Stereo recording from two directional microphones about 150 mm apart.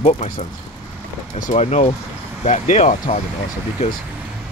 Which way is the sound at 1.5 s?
50° left (ahead or behind).